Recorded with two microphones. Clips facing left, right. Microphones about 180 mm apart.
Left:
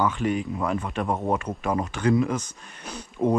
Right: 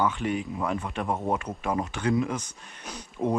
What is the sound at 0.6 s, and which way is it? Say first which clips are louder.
Speech: left 3 dB; 10° right (ahead or behind).